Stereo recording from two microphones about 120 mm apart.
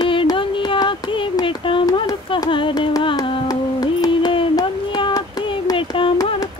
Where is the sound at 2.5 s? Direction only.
45° left (ahead or behind).